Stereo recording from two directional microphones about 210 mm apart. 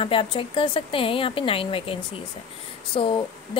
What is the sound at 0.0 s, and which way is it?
A woman's voice, 25° left (ahead or behind).